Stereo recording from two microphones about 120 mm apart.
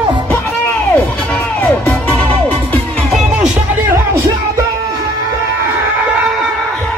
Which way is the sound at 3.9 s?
20° right (ahead or behind).